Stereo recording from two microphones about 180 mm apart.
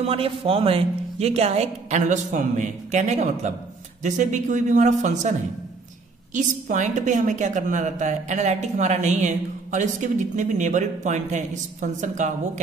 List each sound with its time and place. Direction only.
0.0 s a woman's voice: 30° right (ahead or behind)
6.3 s a woman's voice: 45° right (ahead or behind)